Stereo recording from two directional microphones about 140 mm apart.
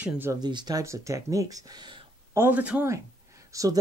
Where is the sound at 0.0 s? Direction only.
15° right (ahead or behind).